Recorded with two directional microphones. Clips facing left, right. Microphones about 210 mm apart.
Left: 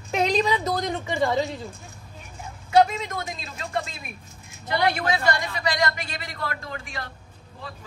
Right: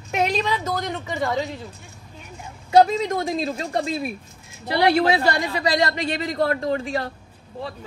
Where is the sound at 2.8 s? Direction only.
35° right (ahead or behind).